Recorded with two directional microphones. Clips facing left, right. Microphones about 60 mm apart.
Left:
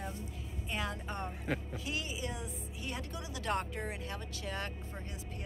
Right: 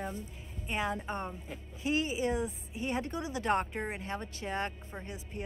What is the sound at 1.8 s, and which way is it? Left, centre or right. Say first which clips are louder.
Speech: right 8 dB; right.